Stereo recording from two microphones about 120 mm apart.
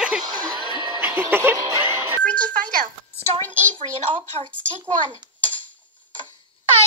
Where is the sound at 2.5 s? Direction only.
90° right.